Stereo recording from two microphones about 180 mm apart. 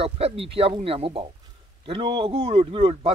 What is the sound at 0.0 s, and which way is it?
Speech, 35° right (ahead or behind).